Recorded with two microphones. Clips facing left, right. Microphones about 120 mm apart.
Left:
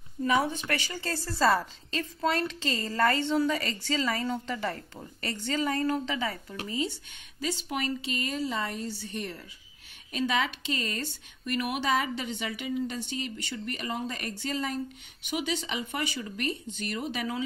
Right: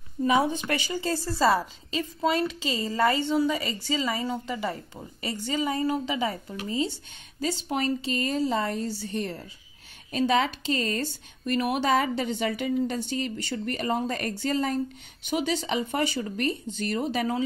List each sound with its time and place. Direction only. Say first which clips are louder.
0.2 s a woman's voice: right 3 dB; 20° right (ahead or behind); by 17.5 s 40° right (ahead or behind)